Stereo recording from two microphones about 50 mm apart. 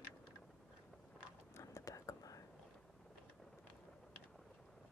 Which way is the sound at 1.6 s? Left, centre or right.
Left.